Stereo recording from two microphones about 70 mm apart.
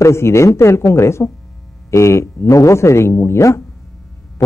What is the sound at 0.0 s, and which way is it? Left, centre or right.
A man's voice, left.